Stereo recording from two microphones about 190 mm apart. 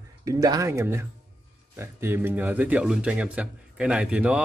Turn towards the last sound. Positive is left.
turn(degrees=-5)  # may be behind; listen again after turning